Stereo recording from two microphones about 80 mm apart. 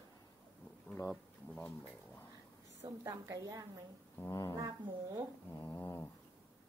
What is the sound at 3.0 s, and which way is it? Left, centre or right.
Speech, right.